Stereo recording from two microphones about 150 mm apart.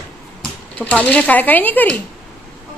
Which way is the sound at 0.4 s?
10° left (ahead or behind).